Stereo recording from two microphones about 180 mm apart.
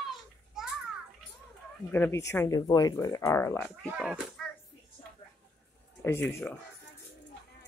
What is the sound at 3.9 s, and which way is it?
Speech, 5° right (ahead or behind).